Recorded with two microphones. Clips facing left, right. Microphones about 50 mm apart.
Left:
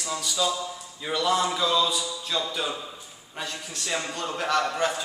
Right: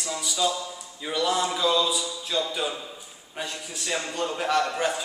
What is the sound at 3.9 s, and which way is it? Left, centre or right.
Speech, centre.